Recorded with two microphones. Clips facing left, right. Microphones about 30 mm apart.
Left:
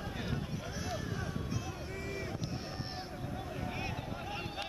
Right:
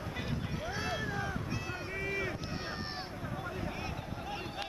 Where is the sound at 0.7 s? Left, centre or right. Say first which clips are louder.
Right 5 dB; right.